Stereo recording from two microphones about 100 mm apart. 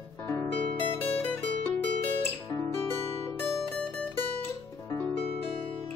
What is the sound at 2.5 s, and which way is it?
Music, 25° left (ahead or behind).